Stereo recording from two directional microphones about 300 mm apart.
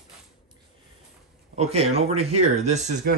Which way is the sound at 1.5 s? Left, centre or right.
Right.